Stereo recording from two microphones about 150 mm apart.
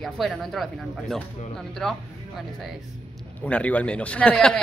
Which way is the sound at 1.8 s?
Centre (ahead or behind).